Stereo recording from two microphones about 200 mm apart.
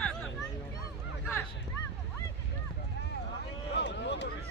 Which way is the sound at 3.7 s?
60° left (ahead or behind).